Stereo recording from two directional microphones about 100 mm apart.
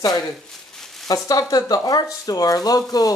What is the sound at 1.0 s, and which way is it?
Speech, 35° left (ahead or behind).